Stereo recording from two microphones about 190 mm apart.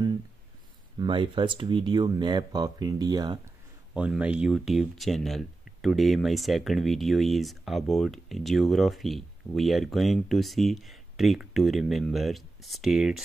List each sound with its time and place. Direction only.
0.9 s speech: 25° right (ahead or behind)
3.9 s speech: 5° right (ahead or behind)